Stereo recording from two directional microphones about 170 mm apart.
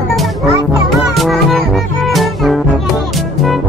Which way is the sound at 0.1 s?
Centre (ahead or behind).